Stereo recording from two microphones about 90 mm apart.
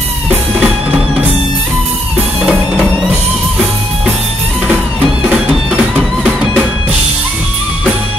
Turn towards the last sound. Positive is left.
turn(degrees=-5)  # may be behind; listen again after turning